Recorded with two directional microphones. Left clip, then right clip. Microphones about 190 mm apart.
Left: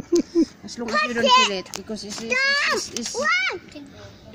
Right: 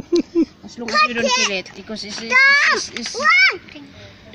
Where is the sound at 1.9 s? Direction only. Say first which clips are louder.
Right 6 dB; 5° left (ahead or behind).